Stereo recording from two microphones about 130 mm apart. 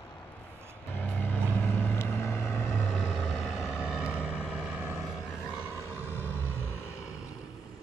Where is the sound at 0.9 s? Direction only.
10° left (ahead or behind).